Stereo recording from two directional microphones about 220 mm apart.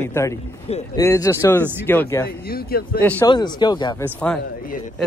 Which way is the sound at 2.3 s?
45° left (ahead or behind).